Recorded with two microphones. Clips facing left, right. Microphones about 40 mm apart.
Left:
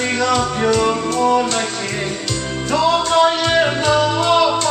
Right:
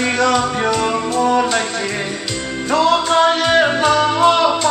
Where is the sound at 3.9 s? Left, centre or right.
Right.